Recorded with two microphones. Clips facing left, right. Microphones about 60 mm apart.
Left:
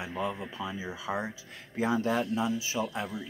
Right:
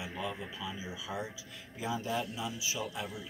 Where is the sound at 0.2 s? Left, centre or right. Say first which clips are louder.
Left 6 dB; left.